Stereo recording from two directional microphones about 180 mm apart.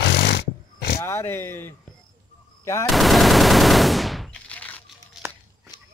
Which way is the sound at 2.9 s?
Centre (ahead or behind).